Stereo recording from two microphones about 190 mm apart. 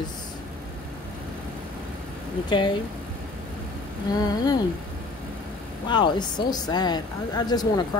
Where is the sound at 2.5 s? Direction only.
25° left (ahead or behind).